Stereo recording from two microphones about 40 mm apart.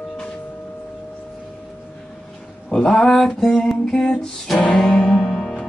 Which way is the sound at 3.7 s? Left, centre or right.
Centre.